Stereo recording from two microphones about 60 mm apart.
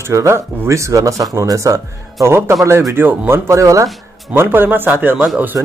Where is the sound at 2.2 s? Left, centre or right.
Right.